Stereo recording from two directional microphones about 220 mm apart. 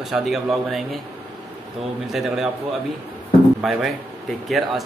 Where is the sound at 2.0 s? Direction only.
Centre (ahead or behind).